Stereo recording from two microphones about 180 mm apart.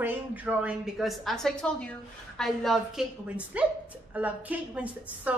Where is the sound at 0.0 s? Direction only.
10° right (ahead or behind).